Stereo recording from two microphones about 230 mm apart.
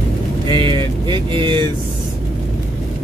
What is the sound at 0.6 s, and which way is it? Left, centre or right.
Speech, right.